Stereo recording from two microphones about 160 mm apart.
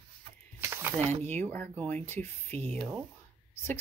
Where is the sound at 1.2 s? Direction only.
10° left (ahead or behind).